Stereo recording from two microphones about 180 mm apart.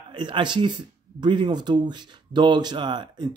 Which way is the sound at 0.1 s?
25° right (ahead or behind).